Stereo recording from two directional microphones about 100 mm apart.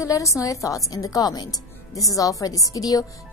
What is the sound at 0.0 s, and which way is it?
A woman's voice, 30° left (ahead or behind).